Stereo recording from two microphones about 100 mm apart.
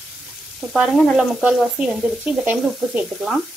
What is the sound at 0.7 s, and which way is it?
A woman's voice, 5° right (ahead or behind).